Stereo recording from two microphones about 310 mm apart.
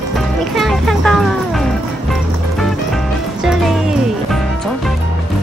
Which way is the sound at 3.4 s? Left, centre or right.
Centre.